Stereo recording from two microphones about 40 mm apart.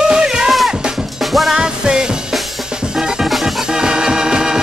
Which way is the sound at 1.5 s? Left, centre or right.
Centre.